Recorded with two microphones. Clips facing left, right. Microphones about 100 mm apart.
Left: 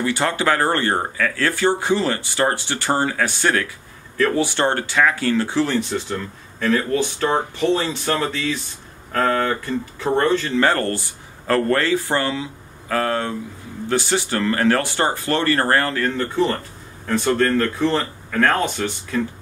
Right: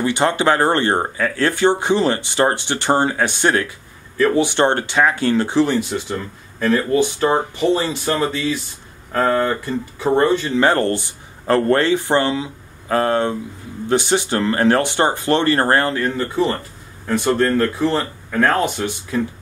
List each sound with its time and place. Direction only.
0.0 s speech: 20° right (ahead or behind)